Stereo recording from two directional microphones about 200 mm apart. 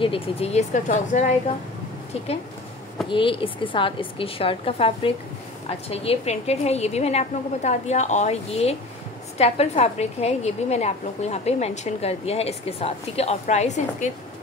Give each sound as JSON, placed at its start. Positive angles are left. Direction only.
{"t": 0.0, "sound": "a woman's voice", "side_deg": 30}
{"t": 3.1, "sound": "a woman's voice", "side_deg": 25}